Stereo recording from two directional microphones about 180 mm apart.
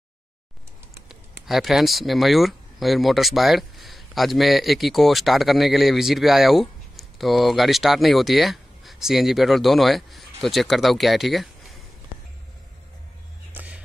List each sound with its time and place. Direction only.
1.4 s speech: centre (ahead or behind)
13.5 s music: 10° right (ahead or behind)